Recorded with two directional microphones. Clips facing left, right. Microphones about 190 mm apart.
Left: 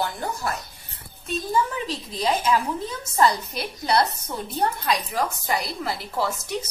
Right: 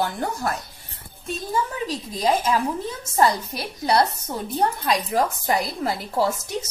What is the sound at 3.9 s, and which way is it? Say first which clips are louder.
A woman's voice: right 2 dB; 40° right (ahead or behind).